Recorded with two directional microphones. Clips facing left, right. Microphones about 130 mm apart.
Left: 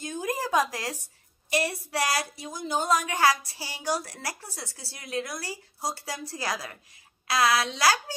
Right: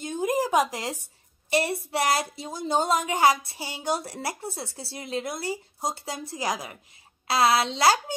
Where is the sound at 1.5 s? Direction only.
25° right (ahead or behind).